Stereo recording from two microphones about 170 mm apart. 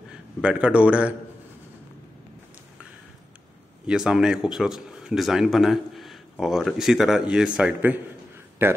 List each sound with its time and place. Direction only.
0.4 s a man's voice: 5° right (ahead or behind)
3.8 s a man's voice: 5° right (ahead or behind)